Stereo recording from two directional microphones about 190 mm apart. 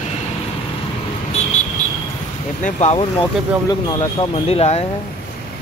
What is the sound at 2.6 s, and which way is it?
Speech, 35° left (ahead or behind).